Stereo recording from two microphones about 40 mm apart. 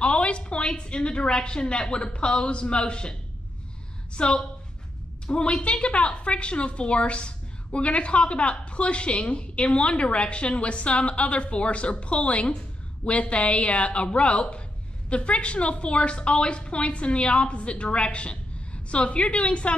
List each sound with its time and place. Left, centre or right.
0.0 s a woman's voice: left